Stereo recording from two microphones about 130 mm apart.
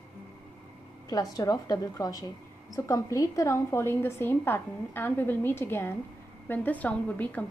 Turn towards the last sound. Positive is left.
turn(degrees=10)  # may be behind; listen again after turning